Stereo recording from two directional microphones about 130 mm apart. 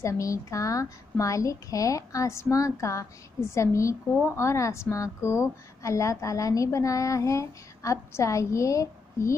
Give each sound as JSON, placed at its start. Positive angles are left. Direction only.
{"t": 0.0, "sound": "a woman's voice", "side_deg": 25}